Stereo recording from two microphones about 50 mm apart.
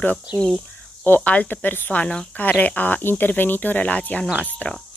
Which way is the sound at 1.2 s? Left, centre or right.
Left.